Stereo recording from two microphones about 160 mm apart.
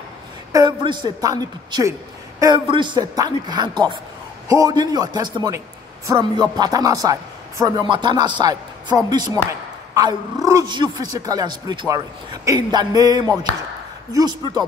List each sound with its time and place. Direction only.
0.5 s speech: 25° right (ahead or behind)